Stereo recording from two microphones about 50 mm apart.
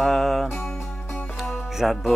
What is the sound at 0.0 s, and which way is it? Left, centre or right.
Music, centre.